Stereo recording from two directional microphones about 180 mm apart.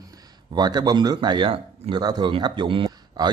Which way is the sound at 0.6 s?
20° right (ahead or behind).